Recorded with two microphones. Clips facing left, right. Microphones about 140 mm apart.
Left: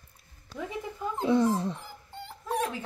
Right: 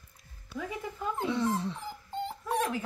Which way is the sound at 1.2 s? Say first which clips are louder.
Left 7 dB; 45° left (ahead or behind).